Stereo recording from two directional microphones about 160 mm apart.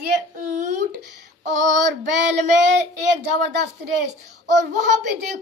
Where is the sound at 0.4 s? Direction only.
55° right (ahead or behind).